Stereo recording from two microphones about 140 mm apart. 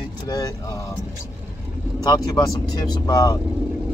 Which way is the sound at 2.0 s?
30° left (ahead or behind).